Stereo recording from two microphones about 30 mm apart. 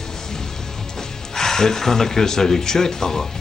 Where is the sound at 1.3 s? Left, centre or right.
Centre.